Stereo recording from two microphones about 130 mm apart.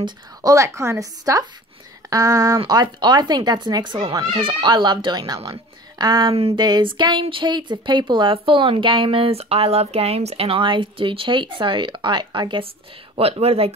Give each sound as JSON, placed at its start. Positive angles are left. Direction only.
{"t": 0.0, "sound": "a woman's voice", "side_deg": -30}
{"t": 6.3, "sound": "speech", "side_deg": -50}
{"t": 6.6, "sound": "speech", "side_deg": -35}
{"t": 13.1, "sound": "speech", "side_deg": -50}